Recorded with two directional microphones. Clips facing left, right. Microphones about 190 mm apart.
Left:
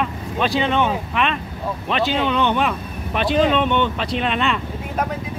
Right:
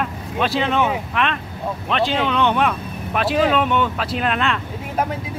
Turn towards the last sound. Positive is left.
turn(degrees=0)  # may be behind; listen again after turning